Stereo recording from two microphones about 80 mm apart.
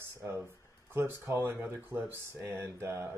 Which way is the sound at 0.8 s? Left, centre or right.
Right.